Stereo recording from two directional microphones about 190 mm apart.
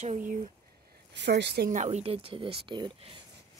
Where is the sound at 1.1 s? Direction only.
65° right (ahead or behind).